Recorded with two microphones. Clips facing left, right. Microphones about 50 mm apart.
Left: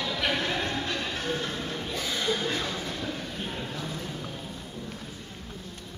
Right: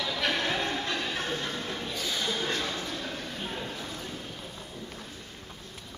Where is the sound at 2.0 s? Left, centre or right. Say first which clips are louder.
Left 4 dB; left.